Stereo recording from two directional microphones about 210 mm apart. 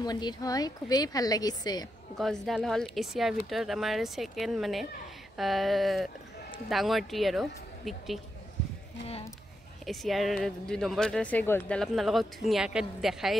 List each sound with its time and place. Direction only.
0.0 s speech: 20° left (ahead or behind)
2.1 s speech: centre (ahead or behind)
9.8 s speech: centre (ahead or behind)